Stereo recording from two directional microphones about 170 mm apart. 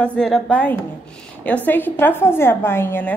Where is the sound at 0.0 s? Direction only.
5° left (ahead or behind).